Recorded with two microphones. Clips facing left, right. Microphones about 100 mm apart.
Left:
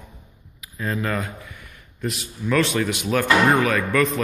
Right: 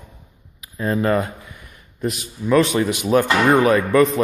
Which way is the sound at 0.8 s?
30° right (ahead or behind).